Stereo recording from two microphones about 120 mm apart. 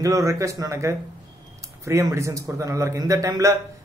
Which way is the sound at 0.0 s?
25° right (ahead or behind).